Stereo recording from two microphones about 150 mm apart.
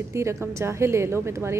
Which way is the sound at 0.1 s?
20° right (ahead or behind).